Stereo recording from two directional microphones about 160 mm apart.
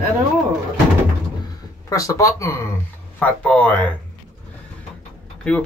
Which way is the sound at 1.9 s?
20° left (ahead or behind).